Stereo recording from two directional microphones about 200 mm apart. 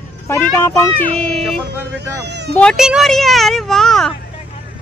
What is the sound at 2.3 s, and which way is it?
Speech, 60° right (ahead or behind).